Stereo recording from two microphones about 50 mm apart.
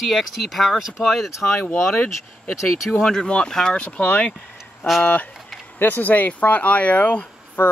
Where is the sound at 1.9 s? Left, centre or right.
Left.